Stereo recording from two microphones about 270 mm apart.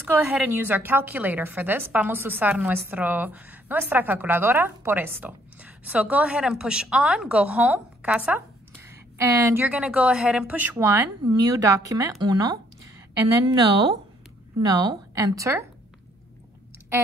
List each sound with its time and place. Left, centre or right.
0.1 s a woman's voice: centre